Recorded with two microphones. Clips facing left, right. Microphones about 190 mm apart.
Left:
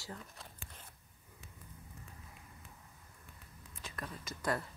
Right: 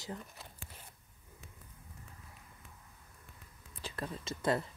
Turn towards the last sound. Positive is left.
turn(degrees=-25)  # may be behind; listen again after turning